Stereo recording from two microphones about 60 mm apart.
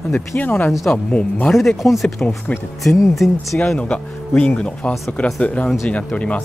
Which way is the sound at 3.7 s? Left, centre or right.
Centre.